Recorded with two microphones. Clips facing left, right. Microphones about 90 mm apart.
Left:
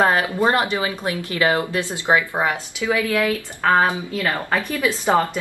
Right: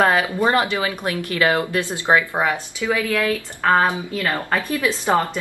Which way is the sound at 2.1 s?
10° right (ahead or behind).